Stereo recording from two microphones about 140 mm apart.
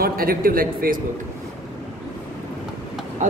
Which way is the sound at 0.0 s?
90° right.